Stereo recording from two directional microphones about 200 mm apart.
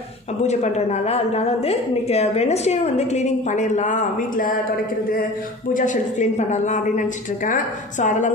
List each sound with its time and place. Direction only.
0.5 s a woman's voice: 35° left (ahead or behind)
5.7 s a woman's voice: 40° left (ahead or behind)